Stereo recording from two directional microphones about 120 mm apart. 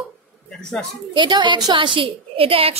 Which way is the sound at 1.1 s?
40° right (ahead or behind).